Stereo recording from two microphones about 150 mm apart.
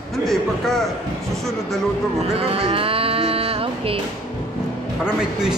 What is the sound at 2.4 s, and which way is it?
Music, 40° right (ahead or behind).